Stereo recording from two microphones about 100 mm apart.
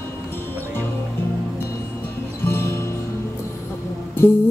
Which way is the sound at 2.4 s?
25° left (ahead or behind).